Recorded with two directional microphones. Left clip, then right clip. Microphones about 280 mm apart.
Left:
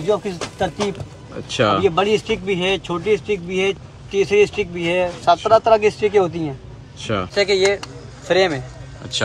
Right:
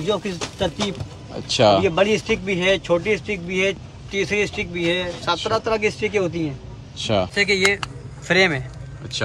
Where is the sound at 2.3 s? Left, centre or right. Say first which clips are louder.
Even; centre.